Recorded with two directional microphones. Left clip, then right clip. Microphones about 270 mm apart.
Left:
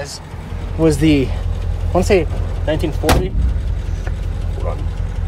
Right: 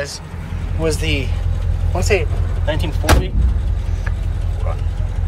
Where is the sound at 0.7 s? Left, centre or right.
Left.